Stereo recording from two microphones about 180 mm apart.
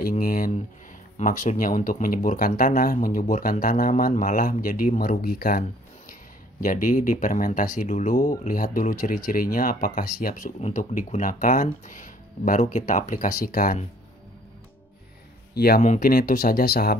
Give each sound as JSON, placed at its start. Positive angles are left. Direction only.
{"t": 0.2, "sound": "a sound", "side_deg": 50}
{"t": 1.1, "sound": "speech", "side_deg": 45}
{"t": 15.5, "sound": "speech", "side_deg": 60}